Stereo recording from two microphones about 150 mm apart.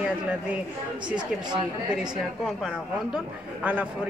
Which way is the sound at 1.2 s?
30° right (ahead or behind).